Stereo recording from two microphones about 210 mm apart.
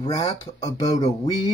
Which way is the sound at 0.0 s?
30° left (ahead or behind).